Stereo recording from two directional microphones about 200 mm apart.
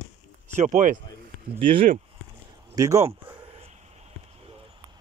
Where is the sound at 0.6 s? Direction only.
40° right (ahead or behind).